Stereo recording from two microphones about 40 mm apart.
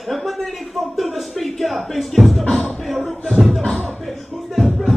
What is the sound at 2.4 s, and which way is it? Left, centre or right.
Music, left.